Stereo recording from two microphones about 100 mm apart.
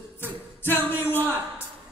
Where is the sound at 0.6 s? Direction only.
20° left (ahead or behind).